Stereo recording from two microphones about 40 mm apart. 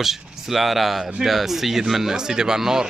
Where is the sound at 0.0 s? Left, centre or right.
Centre.